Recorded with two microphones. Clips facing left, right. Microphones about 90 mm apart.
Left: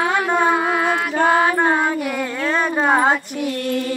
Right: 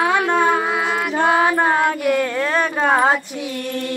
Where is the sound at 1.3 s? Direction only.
5° right (ahead or behind).